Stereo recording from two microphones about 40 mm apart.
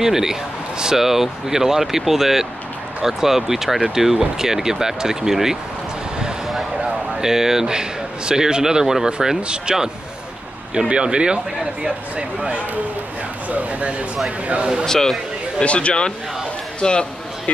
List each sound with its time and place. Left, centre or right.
0.0 s speech: centre
7.2 s speech: centre
10.9 s speech: right
13.5 s speech: right
14.9 s speech: centre
15.6 s speech: left
16.8 s speech: centre